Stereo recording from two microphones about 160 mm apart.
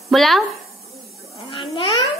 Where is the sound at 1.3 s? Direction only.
35° left (ahead or behind).